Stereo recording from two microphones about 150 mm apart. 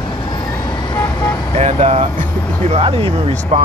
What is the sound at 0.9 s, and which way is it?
Vehicle, 15° left (ahead or behind).